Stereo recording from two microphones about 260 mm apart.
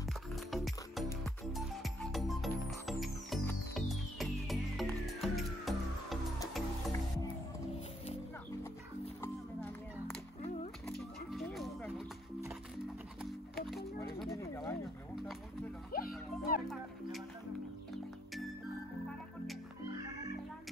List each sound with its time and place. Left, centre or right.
0.3 s music: centre
9.2 s music: centre
13.2 s music: centre
14.3 s a sound: centre
15.9 s music: left